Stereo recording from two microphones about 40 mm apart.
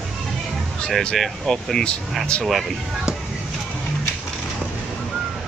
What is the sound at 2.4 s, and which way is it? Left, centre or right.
Speech, centre.